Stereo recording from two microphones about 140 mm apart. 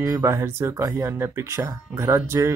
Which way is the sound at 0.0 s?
20° right (ahead or behind).